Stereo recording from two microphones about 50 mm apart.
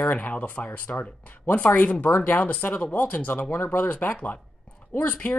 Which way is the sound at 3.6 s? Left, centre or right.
Left.